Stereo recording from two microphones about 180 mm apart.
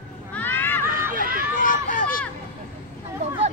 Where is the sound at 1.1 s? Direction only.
50° right (ahead or behind).